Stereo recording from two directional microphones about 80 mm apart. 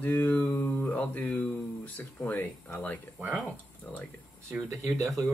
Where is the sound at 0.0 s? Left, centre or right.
Left.